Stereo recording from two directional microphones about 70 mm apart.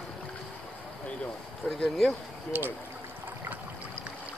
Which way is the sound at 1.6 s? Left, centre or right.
Centre.